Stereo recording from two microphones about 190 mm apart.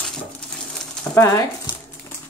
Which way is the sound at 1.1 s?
15° left (ahead or behind).